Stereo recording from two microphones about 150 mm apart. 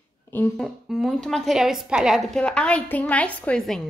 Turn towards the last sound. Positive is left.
turn(degrees=5)  # may be behind; listen again after turning